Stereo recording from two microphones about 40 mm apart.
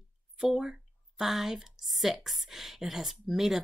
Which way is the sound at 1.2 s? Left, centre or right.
Centre.